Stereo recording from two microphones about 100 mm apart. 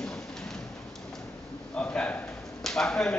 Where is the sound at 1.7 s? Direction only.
10° left (ahead or behind).